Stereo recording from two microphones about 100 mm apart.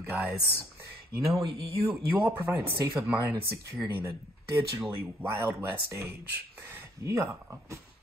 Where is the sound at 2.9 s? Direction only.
30° right (ahead or behind).